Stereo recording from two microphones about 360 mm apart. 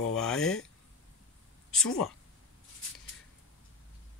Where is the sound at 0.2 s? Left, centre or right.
Centre.